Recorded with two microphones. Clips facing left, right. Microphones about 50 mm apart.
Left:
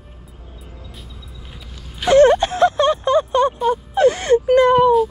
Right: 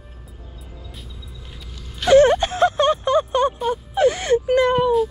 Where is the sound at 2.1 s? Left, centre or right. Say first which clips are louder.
Left 2 dB; left.